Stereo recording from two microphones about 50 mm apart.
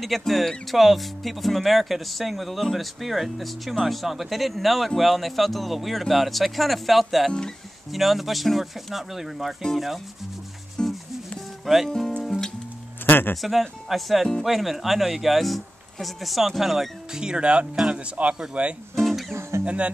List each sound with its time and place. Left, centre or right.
0.0 s speech: centre
10.8 s music: centre
11.6 s speech: centre
12.2 s music: centre
13.0 s speech: left
13.4 s speech: centre
17.2 s speech: centre
18.9 s music: centre
19.6 s speech: right